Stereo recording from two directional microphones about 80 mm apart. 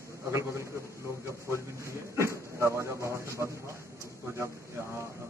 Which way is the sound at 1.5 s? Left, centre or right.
Right.